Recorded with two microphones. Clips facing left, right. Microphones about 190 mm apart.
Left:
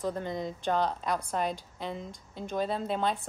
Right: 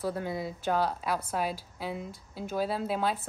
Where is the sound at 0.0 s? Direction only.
5° right (ahead or behind).